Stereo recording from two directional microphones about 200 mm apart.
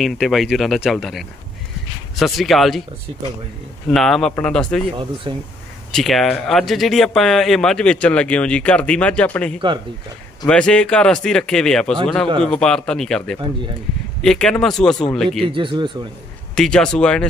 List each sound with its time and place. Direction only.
0.0 s speech: centre (ahead or behind)
3.9 s speech: centre (ahead or behind)
5.3 s speech: 25° right (ahead or behind)
5.9 s speech: centre (ahead or behind)
15.5 s speech: 25° right (ahead or behind)
16.5 s speech: 5° left (ahead or behind)